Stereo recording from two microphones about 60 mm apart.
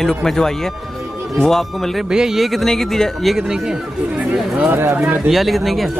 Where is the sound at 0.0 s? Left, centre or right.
Centre.